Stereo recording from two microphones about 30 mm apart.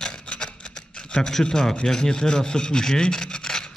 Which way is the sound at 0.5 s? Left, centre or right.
Left.